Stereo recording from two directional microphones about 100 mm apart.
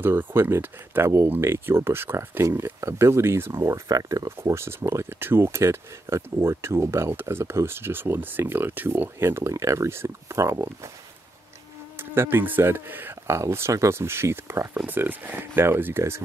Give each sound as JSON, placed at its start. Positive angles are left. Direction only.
{"t": 0.0, "sound": "speech", "side_deg": -20}
{"t": 12.0, "sound": "speech", "side_deg": -20}